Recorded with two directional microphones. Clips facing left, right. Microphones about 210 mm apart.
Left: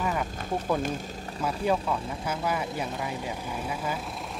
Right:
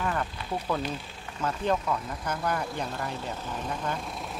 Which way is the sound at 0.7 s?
45° left (ahead or behind).